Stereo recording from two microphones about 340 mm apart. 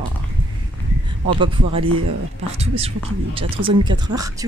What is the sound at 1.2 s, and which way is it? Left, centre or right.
Speech, centre.